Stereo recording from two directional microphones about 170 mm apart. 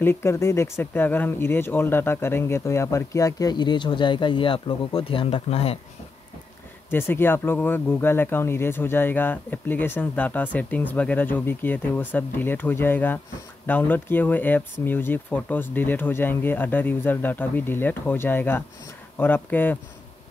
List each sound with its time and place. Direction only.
0.0 s speech: 15° left (ahead or behind); by 5.8 s 35° left (ahead or behind)
6.9 s speech: 15° left (ahead or behind)